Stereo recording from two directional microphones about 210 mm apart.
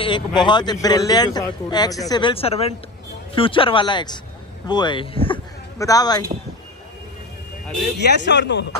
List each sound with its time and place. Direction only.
0.0 s speech: 20° left (ahead or behind)
8.2 s speech: 55° left (ahead or behind)